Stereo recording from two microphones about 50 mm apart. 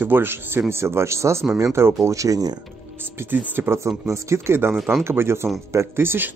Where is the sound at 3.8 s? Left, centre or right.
Right.